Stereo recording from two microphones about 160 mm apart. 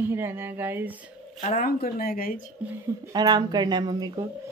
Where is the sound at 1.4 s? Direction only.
55° left (ahead or behind).